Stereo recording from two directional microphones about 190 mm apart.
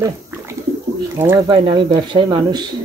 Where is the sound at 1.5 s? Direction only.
25° right (ahead or behind).